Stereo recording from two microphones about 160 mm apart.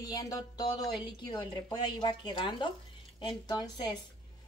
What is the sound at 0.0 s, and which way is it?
A woman's voice, 25° left (ahead or behind).